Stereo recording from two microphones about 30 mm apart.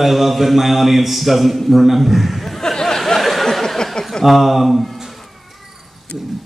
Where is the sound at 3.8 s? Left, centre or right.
Left.